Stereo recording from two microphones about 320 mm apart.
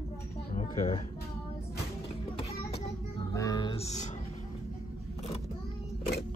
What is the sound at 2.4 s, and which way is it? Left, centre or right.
Music, centre.